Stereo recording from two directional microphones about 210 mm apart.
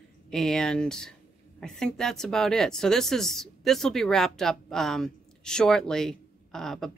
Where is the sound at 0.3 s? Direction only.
5° left (ahead or behind).